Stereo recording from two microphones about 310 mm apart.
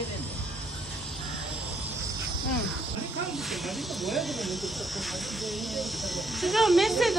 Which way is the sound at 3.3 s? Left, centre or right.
Centre.